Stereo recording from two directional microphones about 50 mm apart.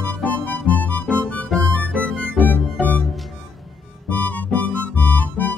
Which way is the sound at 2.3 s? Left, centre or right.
Left.